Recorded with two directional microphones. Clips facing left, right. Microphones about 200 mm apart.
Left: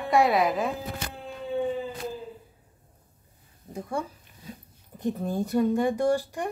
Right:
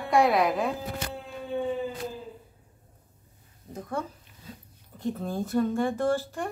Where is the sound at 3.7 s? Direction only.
10° left (ahead or behind).